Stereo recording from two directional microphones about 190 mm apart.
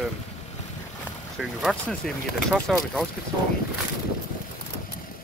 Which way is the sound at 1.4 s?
Centre (ahead or behind).